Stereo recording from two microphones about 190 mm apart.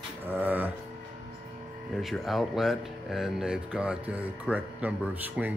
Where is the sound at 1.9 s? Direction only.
Centre (ahead or behind).